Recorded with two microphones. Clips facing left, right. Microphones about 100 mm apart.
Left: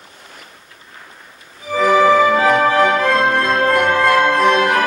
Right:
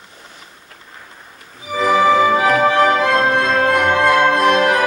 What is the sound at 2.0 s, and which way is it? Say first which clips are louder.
Music: even; 15° right (ahead or behind).